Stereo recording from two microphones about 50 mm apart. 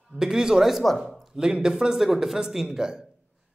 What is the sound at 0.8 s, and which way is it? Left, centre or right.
Speech, centre.